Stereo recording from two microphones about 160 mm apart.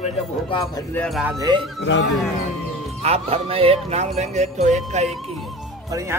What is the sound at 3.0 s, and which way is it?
Speech, 40° right (ahead or behind).